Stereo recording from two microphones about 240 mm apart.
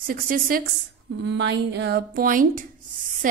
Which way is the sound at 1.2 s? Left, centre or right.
Right.